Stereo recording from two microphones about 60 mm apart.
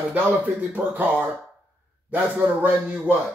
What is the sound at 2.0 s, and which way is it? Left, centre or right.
Speech, right.